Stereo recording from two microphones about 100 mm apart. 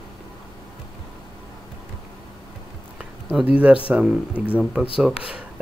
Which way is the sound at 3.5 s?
15° right (ahead or behind).